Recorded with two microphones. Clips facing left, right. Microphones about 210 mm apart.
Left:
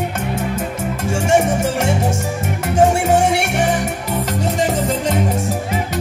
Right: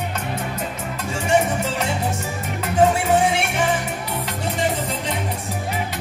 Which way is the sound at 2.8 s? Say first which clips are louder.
Left 3 dB; 45° left (ahead or behind).